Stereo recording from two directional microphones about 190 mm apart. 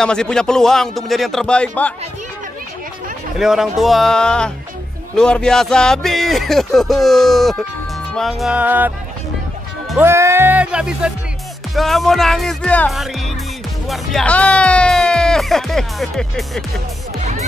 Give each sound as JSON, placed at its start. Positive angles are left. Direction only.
{"t": 0.0, "sound": "speech", "side_deg": 5}
{"t": 3.3, "sound": "speech", "side_deg": 0}
{"t": 17.2, "sound": "music", "side_deg": -35}